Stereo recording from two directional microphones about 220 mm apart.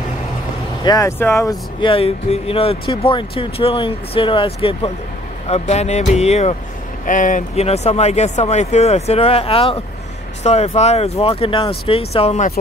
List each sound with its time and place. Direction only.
0.8 s speech: 15° left (ahead or behind)